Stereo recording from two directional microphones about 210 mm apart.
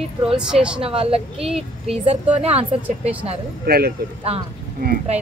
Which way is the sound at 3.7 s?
45° right (ahead or behind).